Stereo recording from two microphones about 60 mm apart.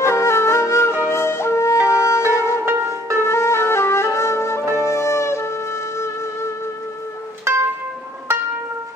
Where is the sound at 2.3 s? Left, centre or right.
Left.